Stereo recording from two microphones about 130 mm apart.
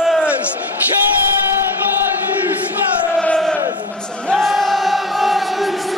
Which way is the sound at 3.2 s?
5° left (ahead or behind).